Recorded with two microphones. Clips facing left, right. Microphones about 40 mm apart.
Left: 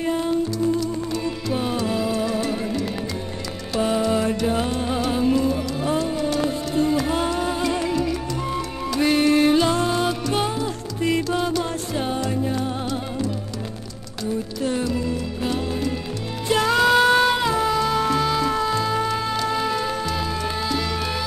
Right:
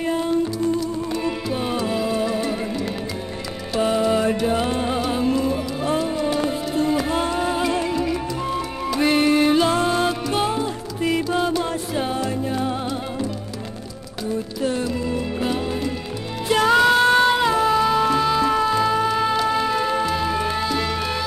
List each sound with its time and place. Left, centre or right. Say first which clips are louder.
0.0 s music: even; centre
1.5 s music: left 3 dB; centre
4.9 s music: left 4 dB; centre
14.6 s music: even; centre